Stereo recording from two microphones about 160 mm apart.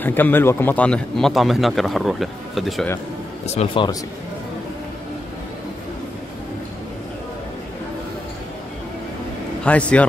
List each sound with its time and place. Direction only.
0.0 s a man's voice: 10° left (ahead or behind)
3.4 s speech: 40° left (ahead or behind)
9.7 s speech: 10° left (ahead or behind)